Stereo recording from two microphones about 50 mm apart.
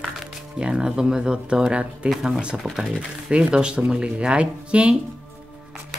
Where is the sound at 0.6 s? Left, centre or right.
Centre.